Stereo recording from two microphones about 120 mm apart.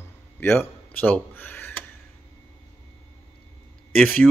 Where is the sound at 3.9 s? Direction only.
5° left (ahead or behind).